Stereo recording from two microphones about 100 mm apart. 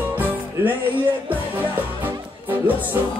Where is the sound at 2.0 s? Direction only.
20° right (ahead or behind).